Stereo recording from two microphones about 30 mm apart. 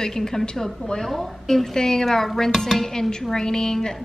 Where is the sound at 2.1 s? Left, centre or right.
Centre.